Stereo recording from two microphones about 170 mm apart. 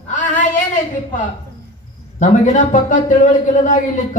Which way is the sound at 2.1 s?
45° left (ahead or behind).